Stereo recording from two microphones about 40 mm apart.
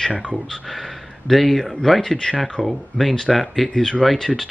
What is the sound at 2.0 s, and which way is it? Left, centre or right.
Speech, centre.